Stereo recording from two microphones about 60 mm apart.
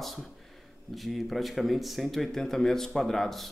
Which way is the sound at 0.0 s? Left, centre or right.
Centre.